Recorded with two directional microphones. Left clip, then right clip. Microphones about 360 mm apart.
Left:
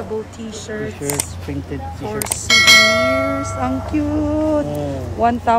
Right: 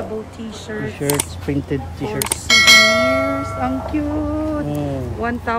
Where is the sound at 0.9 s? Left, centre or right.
Right.